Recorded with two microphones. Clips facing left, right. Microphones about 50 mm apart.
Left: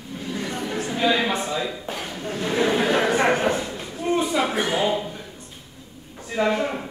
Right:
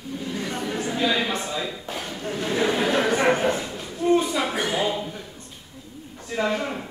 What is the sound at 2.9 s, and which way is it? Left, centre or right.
Speech, left.